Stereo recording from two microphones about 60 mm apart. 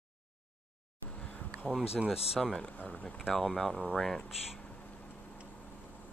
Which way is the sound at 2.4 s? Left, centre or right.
Centre.